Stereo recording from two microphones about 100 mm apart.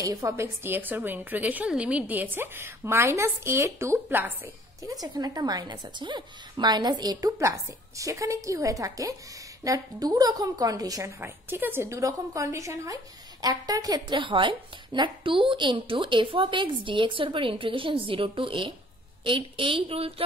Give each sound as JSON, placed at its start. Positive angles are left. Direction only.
{"t": 0.0, "sound": "a woman's voice", "side_deg": -35}
{"t": 4.8, "sound": "a woman's voice", "side_deg": -40}
{"t": 11.1, "sound": "a woman's voice", "side_deg": -20}
{"t": 12.0, "sound": "speech", "side_deg": -35}